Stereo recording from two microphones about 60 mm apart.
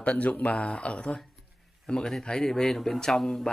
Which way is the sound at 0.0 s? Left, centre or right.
Left.